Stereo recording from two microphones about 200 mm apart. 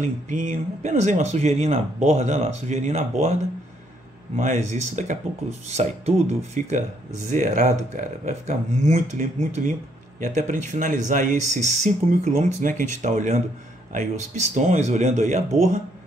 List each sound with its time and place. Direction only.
0.0 s speech: 40° right (ahead or behind)
4.4 s speech: 35° right (ahead or behind)